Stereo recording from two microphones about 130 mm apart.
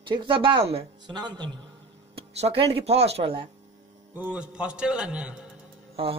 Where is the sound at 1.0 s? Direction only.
35° right (ahead or behind).